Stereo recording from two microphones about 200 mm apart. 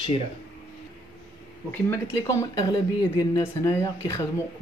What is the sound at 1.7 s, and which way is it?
Speech, 15° left (ahead or behind).